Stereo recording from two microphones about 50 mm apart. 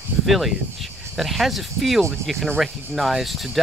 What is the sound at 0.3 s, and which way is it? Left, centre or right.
Speech, centre.